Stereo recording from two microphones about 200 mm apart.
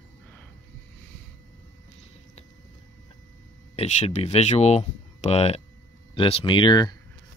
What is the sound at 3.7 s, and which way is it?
Speech, 35° left (ahead or behind).